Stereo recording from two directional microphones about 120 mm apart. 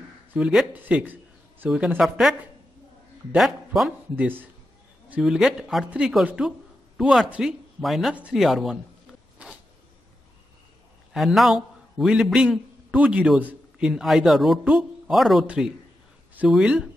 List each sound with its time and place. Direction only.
0.3 s speech: 5° right (ahead or behind)
2.0 s speech: centre (ahead or behind)
3.3 s speech: centre (ahead or behind)
11.1 s a man's voice: centre (ahead or behind)